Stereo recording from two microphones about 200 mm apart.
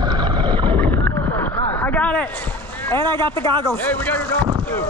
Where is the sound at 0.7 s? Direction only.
10° left (ahead or behind).